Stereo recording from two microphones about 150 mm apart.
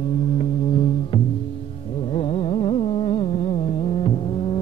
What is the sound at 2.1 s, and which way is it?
Carnatic music, 40° left (ahead or behind).